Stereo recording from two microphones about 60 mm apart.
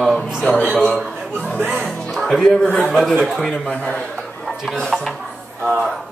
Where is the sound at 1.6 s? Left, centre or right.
Right.